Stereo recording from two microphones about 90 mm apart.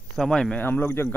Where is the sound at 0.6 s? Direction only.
20° left (ahead or behind).